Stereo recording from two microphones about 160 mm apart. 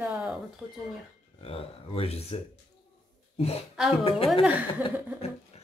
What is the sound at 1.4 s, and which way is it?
Speech, 35° left (ahead or behind).